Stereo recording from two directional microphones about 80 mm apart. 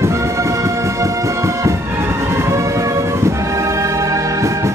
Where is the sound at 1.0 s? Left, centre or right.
Right.